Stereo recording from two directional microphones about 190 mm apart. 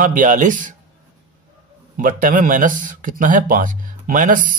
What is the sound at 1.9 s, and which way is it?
Speech, 45° right (ahead or behind).